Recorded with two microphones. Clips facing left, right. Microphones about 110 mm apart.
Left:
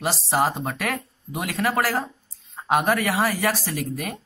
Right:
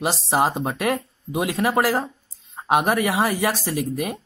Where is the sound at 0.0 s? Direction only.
15° right (ahead or behind).